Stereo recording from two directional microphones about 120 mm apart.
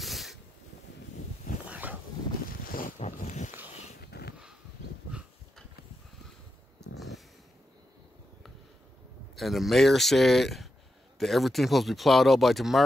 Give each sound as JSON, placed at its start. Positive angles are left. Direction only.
{"t": 0.0, "sound": "hiss", "side_deg": 0}
{"t": 1.7, "sound": "a sound", "side_deg": -10}
{"t": 3.0, "sound": "dog", "side_deg": 80}
{"t": 9.3, "sound": "speech", "side_deg": 0}